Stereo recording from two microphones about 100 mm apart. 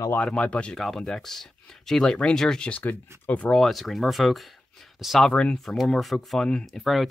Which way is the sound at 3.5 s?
Centre (ahead or behind).